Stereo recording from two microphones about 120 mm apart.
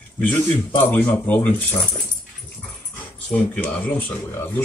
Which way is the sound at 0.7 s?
15° left (ahead or behind).